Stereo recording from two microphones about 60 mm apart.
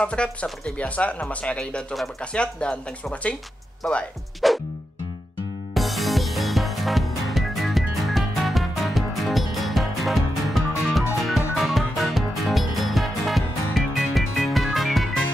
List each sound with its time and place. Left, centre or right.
0.0 s speech: centre
4.4 s music: centre
5.8 s music: centre